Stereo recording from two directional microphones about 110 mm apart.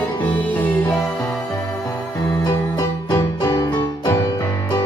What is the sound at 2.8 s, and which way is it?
Music, 35° left (ahead or behind).